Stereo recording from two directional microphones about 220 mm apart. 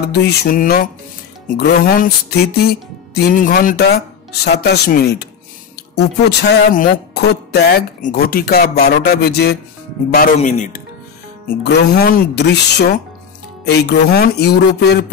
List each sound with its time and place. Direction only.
0.1 s music: 45° left (ahead or behind)
10.1 s speech: 35° left (ahead or behind)
11.4 s music: 45° left (ahead or behind)